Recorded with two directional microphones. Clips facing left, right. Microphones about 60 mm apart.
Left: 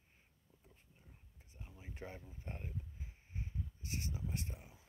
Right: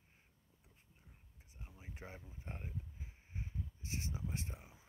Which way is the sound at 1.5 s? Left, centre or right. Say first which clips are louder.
Left 1 dB; centre.